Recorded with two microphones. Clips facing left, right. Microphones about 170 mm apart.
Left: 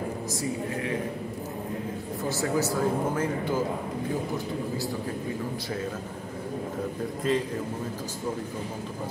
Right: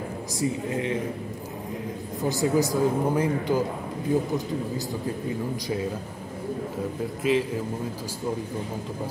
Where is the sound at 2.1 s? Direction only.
15° right (ahead or behind).